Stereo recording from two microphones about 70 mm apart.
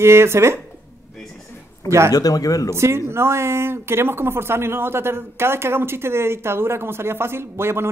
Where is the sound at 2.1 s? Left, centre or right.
Left.